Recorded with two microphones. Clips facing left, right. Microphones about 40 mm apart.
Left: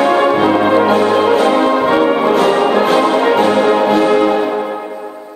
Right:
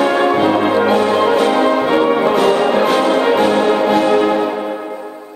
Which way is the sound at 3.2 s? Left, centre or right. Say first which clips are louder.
Left 1 dB; centre.